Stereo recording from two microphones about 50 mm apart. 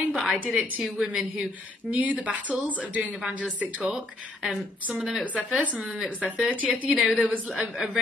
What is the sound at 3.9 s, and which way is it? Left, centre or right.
Speech, centre.